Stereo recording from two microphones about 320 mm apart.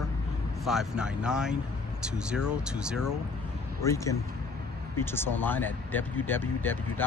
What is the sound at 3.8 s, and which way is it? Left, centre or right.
Speech, centre.